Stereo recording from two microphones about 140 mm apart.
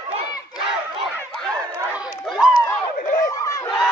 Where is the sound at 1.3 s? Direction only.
5° left (ahead or behind).